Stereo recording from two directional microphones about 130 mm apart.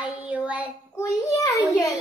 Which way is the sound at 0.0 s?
10° right (ahead or behind).